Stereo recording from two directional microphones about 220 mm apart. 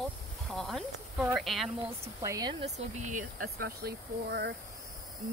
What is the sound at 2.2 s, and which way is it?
Speech, 15° right (ahead or behind).